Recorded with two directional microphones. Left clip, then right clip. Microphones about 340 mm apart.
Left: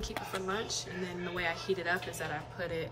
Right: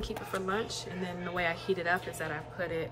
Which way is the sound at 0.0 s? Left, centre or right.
Centre.